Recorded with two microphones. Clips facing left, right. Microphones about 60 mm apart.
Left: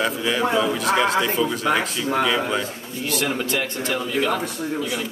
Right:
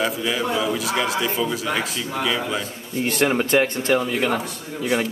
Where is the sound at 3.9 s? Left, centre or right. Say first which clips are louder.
Left 1 dB; right.